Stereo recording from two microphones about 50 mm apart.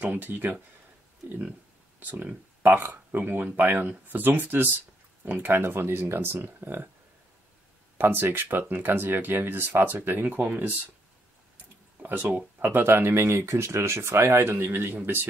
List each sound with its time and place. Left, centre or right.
0.0 s speech: right
2.0 s speech: right
5.5 s speech: right
8.0 s speech: right
10.2 s speech: right
11.5 s a sound: right
12.4 s speech: right